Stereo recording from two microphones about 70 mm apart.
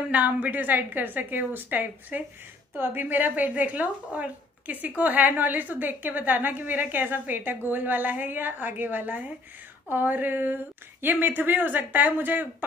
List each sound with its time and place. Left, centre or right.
0.1 s a woman's voice: right